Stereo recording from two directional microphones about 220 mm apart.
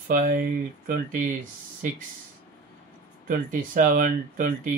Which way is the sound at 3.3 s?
35° right (ahead or behind).